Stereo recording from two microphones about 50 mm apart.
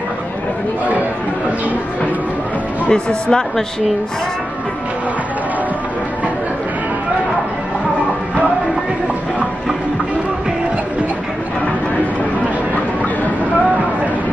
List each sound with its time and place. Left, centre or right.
2.9 s speech: centre